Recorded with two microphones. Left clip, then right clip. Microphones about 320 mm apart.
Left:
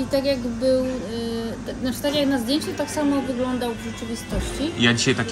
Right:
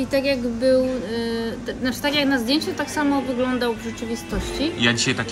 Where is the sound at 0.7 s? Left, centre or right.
Right.